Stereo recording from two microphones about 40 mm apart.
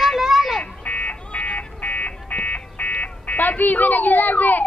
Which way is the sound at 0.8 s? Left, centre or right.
Left.